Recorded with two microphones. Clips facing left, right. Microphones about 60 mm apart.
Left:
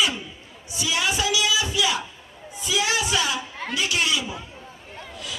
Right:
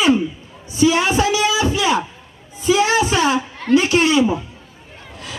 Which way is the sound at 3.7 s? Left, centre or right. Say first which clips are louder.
Right 11 dB; right.